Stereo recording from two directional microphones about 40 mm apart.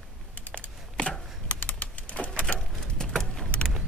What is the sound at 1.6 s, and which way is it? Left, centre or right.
Typewriter, left.